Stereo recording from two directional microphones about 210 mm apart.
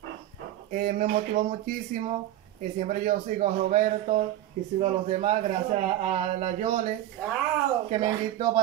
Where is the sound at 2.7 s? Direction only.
40° right (ahead or behind).